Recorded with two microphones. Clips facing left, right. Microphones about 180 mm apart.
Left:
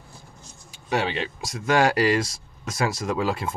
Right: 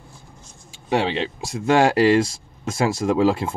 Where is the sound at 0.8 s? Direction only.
25° right (ahead or behind).